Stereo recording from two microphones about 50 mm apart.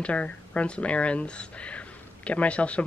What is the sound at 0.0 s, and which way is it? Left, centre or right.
Speech, left.